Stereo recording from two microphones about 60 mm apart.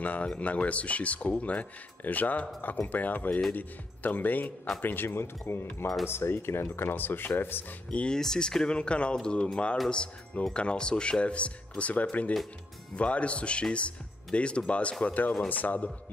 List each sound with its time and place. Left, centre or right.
0.0 s speech: left
7.9 s speech: centre